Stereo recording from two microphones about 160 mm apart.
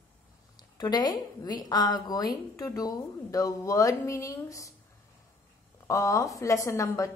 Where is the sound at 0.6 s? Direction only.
25° left (ahead or behind).